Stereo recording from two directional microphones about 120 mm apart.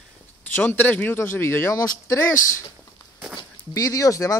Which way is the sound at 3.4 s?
30° left (ahead or behind).